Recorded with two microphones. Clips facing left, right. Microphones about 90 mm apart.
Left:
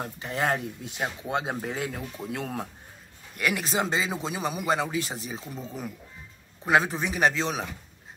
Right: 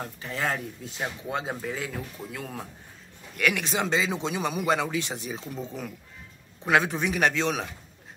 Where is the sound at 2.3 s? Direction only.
30° left (ahead or behind).